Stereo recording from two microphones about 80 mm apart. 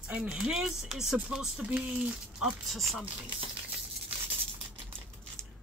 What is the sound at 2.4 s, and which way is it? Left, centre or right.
Speech, centre.